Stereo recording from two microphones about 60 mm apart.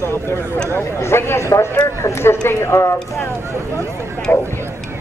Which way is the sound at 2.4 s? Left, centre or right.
Left.